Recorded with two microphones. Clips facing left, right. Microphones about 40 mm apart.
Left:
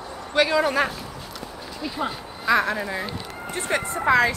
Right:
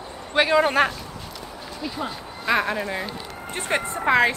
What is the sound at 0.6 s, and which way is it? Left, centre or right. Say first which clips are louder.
Speech: right 2 dB; right.